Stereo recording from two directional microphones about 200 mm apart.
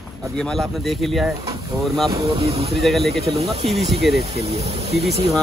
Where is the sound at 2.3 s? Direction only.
30° right (ahead or behind).